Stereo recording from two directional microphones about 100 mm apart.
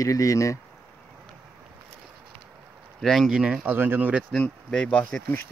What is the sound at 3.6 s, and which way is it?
Speech, 20° right (ahead or behind).